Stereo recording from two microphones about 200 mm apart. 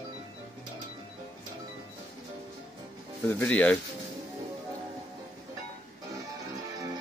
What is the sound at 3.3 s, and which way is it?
Speech, 5° left (ahead or behind).